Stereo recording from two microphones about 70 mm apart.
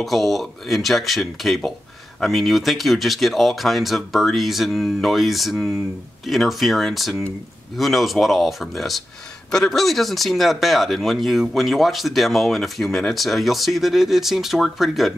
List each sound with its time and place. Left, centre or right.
0.0 s speech: centre